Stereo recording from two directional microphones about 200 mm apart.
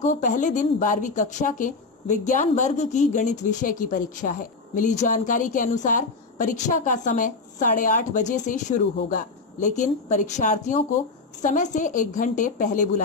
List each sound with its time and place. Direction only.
0.0 s a woman's voice: 40° left (ahead or behind)